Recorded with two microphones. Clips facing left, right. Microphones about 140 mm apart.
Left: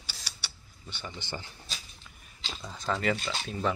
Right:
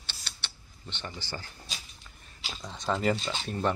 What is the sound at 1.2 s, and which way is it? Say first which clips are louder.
Speech: left 1 dB; 20° left (ahead or behind).